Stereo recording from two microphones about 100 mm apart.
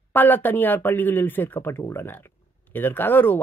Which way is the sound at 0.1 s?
20° left (ahead or behind).